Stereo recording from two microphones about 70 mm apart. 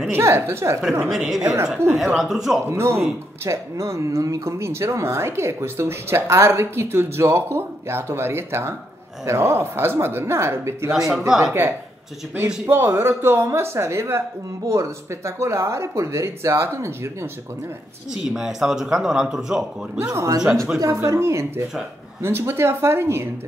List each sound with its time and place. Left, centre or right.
0.1 s speech: right
1.0 s speech: centre
2.7 s speech: right
10.9 s speech: centre
12.6 s speech: right
18.1 s speech: centre
20.0 s speech: right